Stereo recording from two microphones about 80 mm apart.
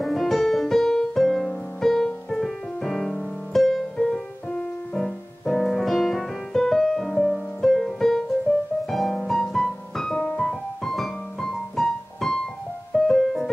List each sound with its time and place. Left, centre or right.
0.0 s music: centre
10.2 s piano: centre
12.9 s music: centre